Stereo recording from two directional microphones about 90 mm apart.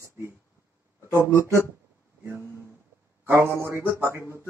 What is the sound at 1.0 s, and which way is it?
Speech, 30° right (ahead or behind).